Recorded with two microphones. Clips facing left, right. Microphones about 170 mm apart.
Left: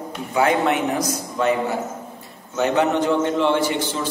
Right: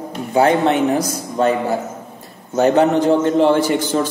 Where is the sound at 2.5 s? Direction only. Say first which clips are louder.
Right 6 dB; 35° right (ahead or behind).